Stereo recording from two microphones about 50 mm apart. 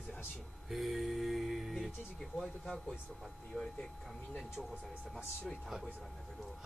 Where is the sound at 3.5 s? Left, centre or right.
Centre.